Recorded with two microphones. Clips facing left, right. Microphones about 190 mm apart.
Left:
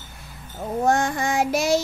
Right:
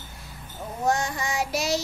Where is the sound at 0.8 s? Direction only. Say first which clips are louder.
Left 4 dB; 55° left (ahead or behind).